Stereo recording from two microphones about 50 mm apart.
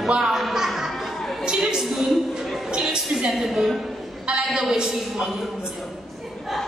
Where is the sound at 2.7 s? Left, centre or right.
Centre.